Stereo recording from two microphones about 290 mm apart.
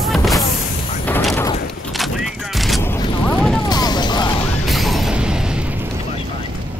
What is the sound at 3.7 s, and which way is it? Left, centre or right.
Music, centre.